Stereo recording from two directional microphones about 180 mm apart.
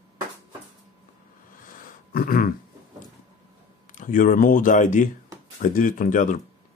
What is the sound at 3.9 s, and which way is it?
Speech, 50° left (ahead or behind).